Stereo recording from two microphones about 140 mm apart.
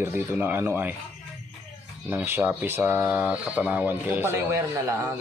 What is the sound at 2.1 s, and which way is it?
Speech, 15° right (ahead or behind).